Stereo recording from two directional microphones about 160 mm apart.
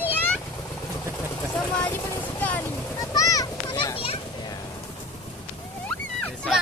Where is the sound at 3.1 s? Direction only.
20° left (ahead or behind).